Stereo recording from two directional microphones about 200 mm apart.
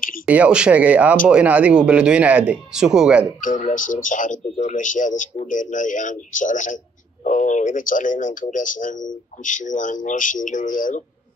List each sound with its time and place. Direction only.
0.3 s speech: 5° right (ahead or behind)
3.3 s speech: 40° left (ahead or behind)